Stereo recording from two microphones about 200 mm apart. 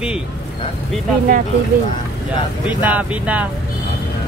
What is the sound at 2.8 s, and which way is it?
Speech, 10° right (ahead or behind).